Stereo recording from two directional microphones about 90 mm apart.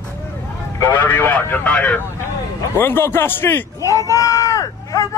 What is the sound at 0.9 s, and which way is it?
A man's voice, 20° left (ahead or behind).